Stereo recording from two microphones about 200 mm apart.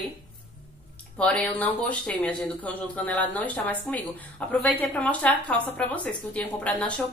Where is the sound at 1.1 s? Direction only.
5° left (ahead or behind).